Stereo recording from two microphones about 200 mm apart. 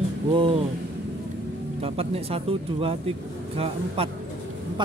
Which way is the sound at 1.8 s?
30° right (ahead or behind).